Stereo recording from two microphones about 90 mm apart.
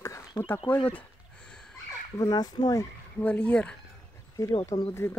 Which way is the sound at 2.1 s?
50° left (ahead or behind).